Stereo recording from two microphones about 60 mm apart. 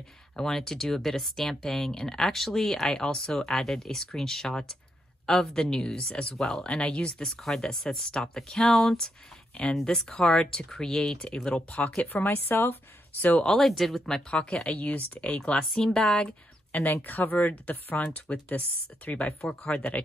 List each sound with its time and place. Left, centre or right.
0.4 s a woman's voice: centre; by 12.7 s left
13.4 s speech: centre
14.3 s a woman's voice: centre
16.9 s speech: left